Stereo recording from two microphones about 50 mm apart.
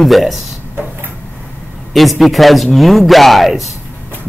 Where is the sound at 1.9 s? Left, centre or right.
Centre.